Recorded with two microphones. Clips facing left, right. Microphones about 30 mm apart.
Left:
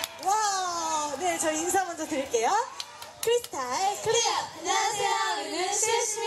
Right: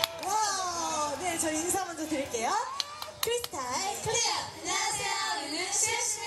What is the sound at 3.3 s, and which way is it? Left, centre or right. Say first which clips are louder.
Speech: left 6 dB; left.